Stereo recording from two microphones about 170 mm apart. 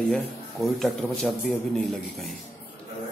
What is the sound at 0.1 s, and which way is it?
A man's voice, centre (ahead or behind).